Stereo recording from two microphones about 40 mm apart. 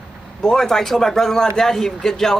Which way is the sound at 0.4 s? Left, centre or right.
Centre.